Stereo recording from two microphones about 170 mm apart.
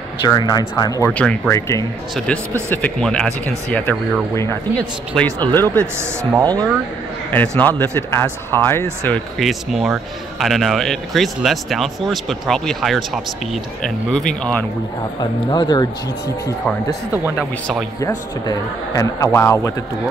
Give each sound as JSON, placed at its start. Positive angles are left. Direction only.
{"t": 0.2, "sound": "a man's voice", "side_deg": 25}
{"t": 1.1, "sound": "speech", "side_deg": 5}
{"t": 1.5, "sound": "a man's voice", "side_deg": 20}
{"t": 2.1, "sound": "speech", "side_deg": 5}
{"t": 5.9, "sound": "a man's voice", "side_deg": -20}
{"t": 7.2, "sound": "speech", "side_deg": 10}
{"t": 15.1, "sound": "a man's voice", "side_deg": 25}
{"t": 17.4, "sound": "speech", "side_deg": 5}
{"t": 18.0, "sound": "a man's voice", "side_deg": 20}